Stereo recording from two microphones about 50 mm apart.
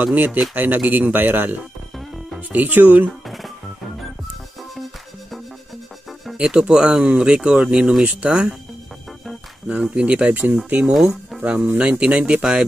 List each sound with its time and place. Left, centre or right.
0.0 s speech: right
6.4 s speech: centre
9.7 s speech: right
10.3 s speech: right